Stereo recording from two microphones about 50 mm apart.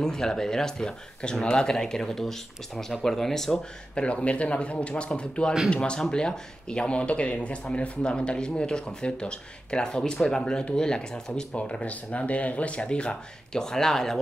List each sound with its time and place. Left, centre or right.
0.0 s speech: centre
3.9 s speech: left